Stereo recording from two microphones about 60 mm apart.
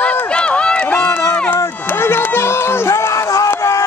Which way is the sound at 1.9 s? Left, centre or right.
Left.